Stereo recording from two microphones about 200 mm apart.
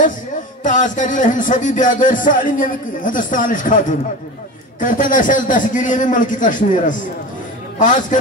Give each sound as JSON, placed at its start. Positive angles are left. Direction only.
{"t": 0.7, "sound": "speech", "side_deg": 40}